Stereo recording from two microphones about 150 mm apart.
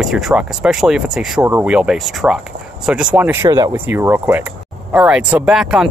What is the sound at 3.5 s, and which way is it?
Speech, 25° right (ahead or behind).